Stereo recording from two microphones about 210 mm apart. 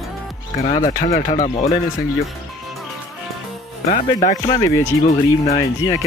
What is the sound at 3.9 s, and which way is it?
Speech, 35° left (ahead or behind).